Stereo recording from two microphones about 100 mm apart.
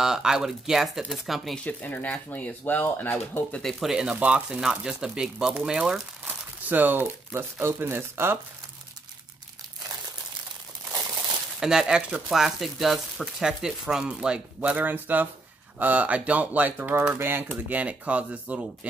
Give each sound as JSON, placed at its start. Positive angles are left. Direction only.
{"t": 0.0, "sound": "speech", "side_deg": -5}
{"t": 1.6, "sound": "speech", "side_deg": 15}
{"t": 3.6, "sound": "speech", "side_deg": -5}
{"t": 6.2, "sound": "crumpling", "side_deg": -20}
{"t": 7.6, "sound": "speech", "side_deg": -25}
{"t": 10.9, "sound": "crumpling", "side_deg": -30}
{"t": 11.6, "sound": "speech", "side_deg": -5}